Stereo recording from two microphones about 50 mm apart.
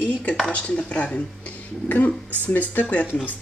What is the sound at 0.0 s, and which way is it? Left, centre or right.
Speech, left.